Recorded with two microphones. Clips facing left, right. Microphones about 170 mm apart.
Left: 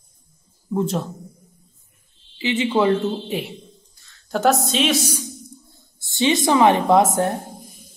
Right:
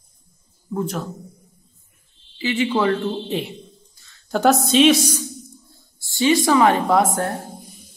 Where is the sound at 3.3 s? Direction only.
10° left (ahead or behind).